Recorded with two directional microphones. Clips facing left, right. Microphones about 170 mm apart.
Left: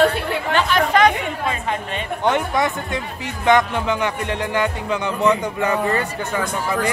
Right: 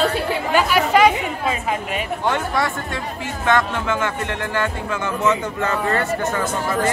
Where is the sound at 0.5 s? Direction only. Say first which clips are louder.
Right 1 dB; 10° right (ahead or behind).